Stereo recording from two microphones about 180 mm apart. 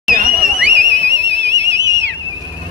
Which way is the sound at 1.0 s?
75° right (ahead or behind).